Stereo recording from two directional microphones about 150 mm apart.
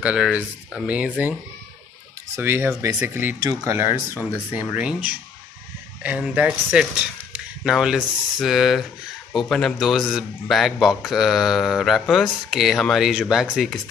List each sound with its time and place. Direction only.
0.0 s speech: 5° right (ahead or behind)
2.3 s a man's voice: 15° right (ahead or behind)